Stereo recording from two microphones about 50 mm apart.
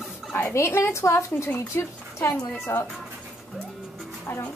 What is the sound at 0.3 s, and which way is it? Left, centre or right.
Speech, left.